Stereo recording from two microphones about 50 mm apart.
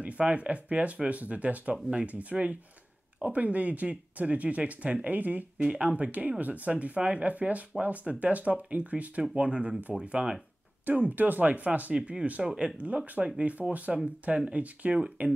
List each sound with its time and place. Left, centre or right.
0.0 s speech: right
5.6 s speech: right
12.7 s speech: right